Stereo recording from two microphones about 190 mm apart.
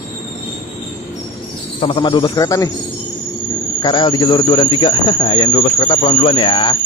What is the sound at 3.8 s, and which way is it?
Speech, 25° left (ahead or behind).